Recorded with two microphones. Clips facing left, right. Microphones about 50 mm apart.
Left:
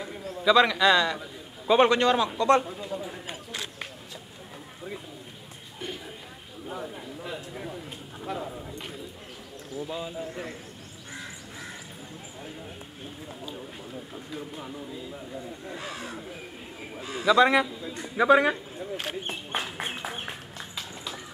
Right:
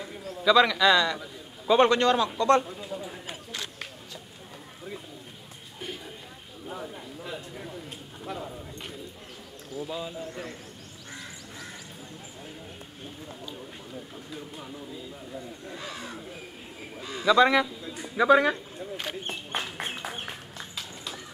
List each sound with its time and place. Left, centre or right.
0.0 s a man's voice: centre
1.7 s a man's voice: centre
2.6 s a man's voice: centre
6.7 s a sound: centre
9.8 s speech: centre
14.1 s a man's voice: centre
18.8 s a sound: centre